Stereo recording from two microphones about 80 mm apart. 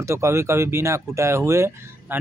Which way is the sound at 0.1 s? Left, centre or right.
Right.